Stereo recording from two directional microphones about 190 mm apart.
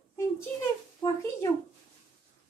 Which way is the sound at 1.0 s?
15° left (ahead or behind).